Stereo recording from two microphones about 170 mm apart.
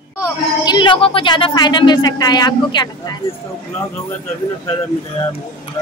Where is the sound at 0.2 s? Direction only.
25° left (ahead or behind).